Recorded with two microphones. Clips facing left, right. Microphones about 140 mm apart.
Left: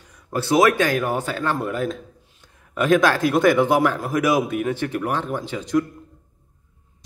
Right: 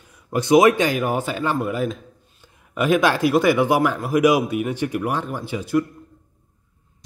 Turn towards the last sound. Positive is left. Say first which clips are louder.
# even
turn(degrees=-10)  # may be behind; listen again after turning